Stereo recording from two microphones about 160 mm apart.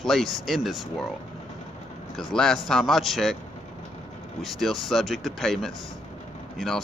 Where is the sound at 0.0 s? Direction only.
Centre (ahead or behind).